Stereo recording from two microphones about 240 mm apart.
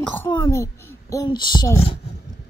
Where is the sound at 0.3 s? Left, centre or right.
Centre.